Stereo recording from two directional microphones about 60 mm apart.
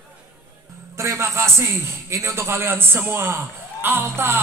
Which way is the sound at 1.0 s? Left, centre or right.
Right.